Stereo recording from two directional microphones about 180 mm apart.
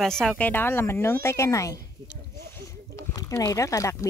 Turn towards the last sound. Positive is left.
turn(degrees=15)  # may be behind; listen again after turning